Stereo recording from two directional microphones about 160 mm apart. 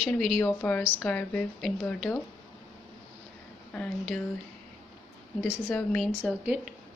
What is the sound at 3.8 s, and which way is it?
Speech, 5° left (ahead or behind).